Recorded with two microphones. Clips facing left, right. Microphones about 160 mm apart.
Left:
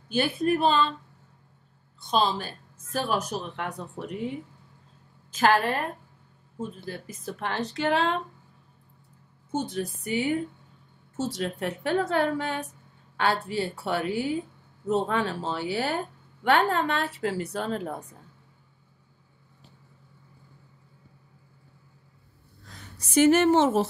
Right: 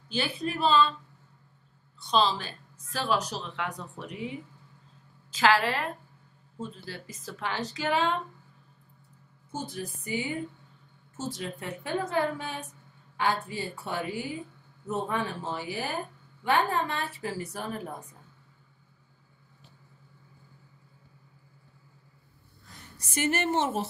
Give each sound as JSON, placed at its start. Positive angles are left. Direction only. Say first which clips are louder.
{"t": 0.1, "sound": "a woman's voice", "louder": "left 7 dB", "side_deg": 50}
{"t": 2.0, "sound": "a woman's voice", "louder": "left 1 dB", "side_deg": 50}
{"t": 6.9, "sound": "speech", "louder": "left 5 dB", "side_deg": 55}
{"t": 9.6, "sound": "speech", "louder": "left 6 dB", "side_deg": 85}
{"t": 22.7, "sound": "a woman's voice", "louder": "left 3 dB", "side_deg": 90}